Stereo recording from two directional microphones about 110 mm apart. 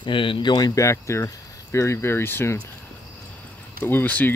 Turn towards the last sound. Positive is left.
turn(degrees=15)  # may be behind; listen again after turning